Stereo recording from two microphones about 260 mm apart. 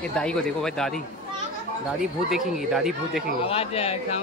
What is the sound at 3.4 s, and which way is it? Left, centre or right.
Speech, left.